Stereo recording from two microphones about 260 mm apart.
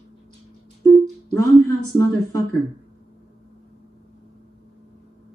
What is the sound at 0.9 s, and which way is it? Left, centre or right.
Music, centre.